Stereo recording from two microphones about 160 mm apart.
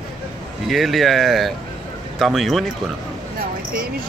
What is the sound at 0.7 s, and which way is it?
A man's voice, centre (ahead or behind).